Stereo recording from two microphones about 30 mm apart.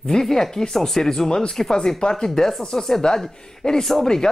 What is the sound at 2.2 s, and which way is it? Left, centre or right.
Speech, centre.